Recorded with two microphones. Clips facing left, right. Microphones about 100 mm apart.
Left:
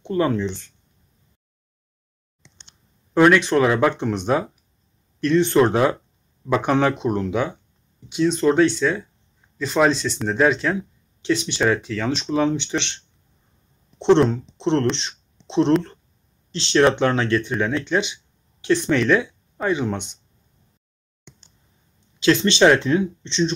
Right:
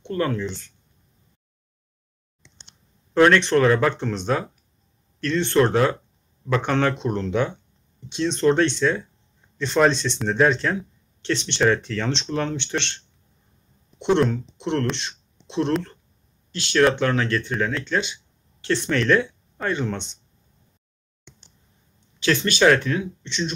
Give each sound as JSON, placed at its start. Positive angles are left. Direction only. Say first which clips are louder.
{"t": 0.1, "sound": "speech", "louder": "left 4 dB", "side_deg": 20}
{"t": 3.2, "sound": "speech", "louder": "left 1 dB", "side_deg": 10}
{"t": 14.3, "sound": "speech", "louder": "left 4 dB", "side_deg": 25}
{"t": 15.0, "sound": "a sound", "louder": "even", "side_deg": 20}
{"t": 16.5, "sound": "speech", "louder": "left 2 dB", "side_deg": 25}
{"t": 22.2, "sound": "speech", "louder": "left 3 dB", "side_deg": 20}